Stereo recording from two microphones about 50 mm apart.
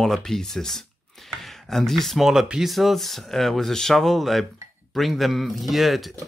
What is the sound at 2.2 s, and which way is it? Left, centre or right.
Speech, centre.